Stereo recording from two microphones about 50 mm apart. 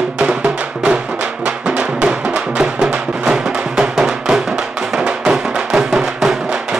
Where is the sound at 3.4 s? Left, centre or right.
Centre.